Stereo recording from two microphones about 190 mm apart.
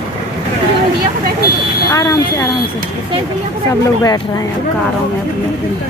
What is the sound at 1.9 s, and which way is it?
Speech, 20° left (ahead or behind).